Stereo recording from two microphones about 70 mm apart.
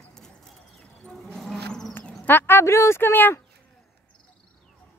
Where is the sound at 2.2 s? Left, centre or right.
Left.